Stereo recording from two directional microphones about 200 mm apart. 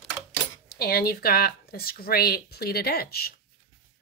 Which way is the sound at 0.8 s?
50° left (ahead or behind).